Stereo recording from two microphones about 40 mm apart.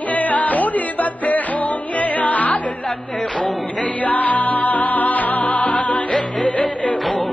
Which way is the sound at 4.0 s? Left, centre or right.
Left.